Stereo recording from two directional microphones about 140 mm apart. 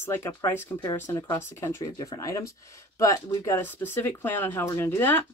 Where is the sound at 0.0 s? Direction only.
15° left (ahead or behind).